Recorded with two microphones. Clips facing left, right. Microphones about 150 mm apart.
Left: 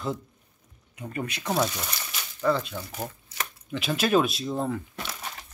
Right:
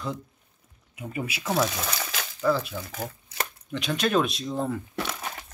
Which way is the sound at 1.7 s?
90° right.